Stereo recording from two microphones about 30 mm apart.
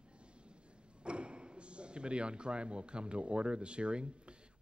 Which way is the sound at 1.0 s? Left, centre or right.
Right.